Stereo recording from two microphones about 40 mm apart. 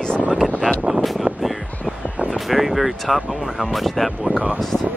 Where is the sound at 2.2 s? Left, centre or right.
Centre.